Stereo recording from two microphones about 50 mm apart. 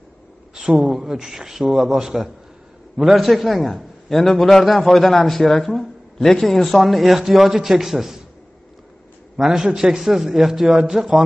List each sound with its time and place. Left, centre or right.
0.6 s a man's voice: centre
9.4 s a man's voice: centre